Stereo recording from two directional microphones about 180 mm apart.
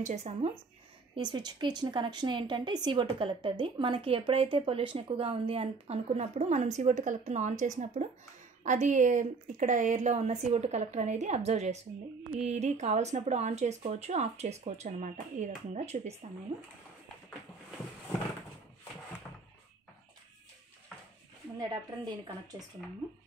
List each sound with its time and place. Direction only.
0.0 s speech: 40° right (ahead or behind)
1.1 s a woman's voice: 25° right (ahead or behind)